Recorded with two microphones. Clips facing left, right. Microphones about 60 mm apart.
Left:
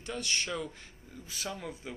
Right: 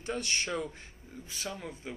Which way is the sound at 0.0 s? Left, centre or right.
Right.